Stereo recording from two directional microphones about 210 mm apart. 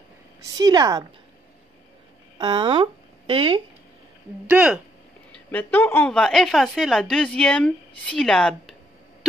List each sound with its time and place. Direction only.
0.4 s a woman's voice: 15° right (ahead or behind)
2.3 s speech: 20° right (ahead or behind)
4.5 s a woman's voice: 5° right (ahead or behind)
5.5 s a woman's voice: 10° left (ahead or behind)